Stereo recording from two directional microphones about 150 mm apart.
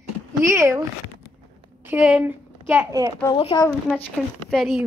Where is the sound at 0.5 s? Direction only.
20° right (ahead or behind).